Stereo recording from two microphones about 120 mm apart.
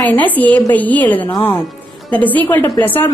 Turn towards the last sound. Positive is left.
turn(degrees=15)  # may be behind; listen again after turning